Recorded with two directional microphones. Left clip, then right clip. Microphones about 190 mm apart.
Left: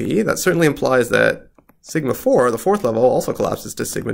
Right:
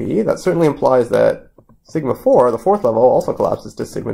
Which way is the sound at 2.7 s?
5° left (ahead or behind).